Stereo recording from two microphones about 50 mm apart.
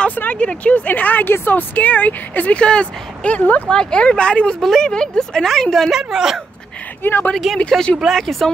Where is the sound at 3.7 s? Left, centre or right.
Centre.